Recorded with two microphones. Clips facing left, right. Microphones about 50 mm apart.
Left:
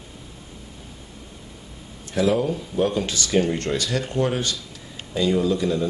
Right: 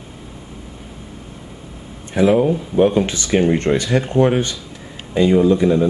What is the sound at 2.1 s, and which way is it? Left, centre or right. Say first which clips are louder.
Speech: right 7 dB; right.